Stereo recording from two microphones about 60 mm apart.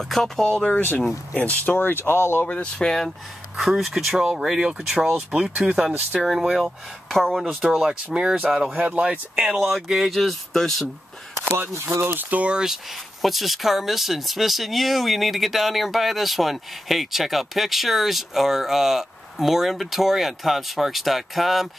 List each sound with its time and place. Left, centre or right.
0.1 s speech: centre
0.7 s speech: left
1.8 s speech: left
2.4 s speech: centre
3.5 s speech: centre
8.1 s speech: centre
8.7 s speech: right
9.3 s speech: centre
11.5 s speech: right
12.2 s speech: right
13.2 s speech: centre